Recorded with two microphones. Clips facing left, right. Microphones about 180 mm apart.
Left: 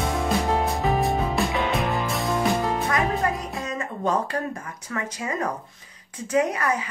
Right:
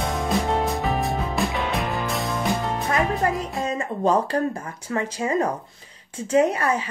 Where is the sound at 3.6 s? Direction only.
30° right (ahead or behind).